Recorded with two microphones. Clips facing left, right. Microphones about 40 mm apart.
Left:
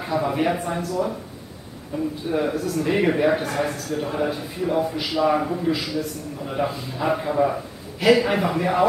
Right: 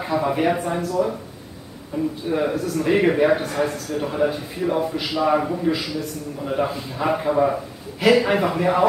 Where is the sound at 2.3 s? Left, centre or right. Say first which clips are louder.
Right 1 dB; centre.